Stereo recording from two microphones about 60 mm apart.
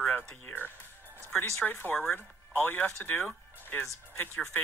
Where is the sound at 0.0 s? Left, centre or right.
Centre.